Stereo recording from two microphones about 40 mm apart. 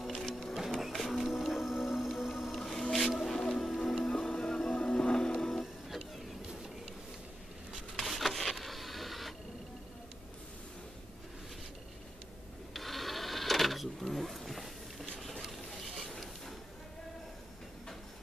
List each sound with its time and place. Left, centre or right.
0.2 s music: centre
0.7 s music: centre
2.5 s music: centre
3.1 s music: centre
3.3 s music: centre
5.5 s printer: centre
7.9 s printer: centre
12.7 s sewing machine: centre
16.0 s a sound: centre